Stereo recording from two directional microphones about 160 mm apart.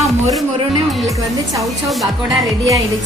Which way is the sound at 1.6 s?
Centre (ahead or behind).